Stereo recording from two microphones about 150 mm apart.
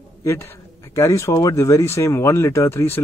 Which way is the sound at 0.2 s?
20° left (ahead or behind).